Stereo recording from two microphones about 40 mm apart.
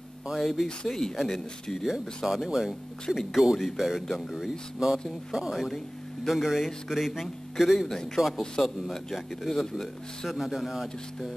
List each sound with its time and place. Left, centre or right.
0.4 s speech: centre
8.2 s a man's voice: right
8.6 s speech: centre
9.5 s speech: centre
9.8 s speech: centre